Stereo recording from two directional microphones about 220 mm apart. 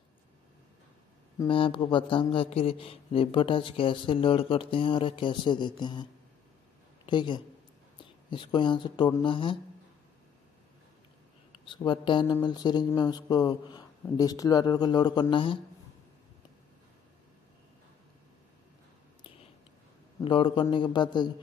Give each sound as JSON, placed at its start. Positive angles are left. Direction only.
{"t": 1.4, "sound": "a man's voice", "side_deg": 25}
{"t": 7.1, "sound": "a man's voice", "side_deg": 20}
{"t": 11.6, "sound": "a man's voice", "side_deg": 20}
{"t": 20.2, "sound": "a man's voice", "side_deg": 20}